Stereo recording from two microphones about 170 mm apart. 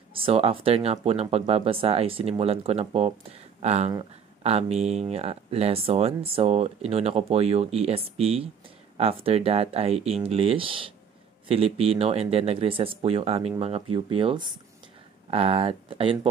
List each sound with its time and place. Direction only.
0.1 s speech: 35° right (ahead or behind)